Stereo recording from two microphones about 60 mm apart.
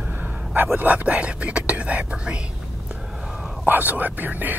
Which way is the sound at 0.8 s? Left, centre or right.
Right.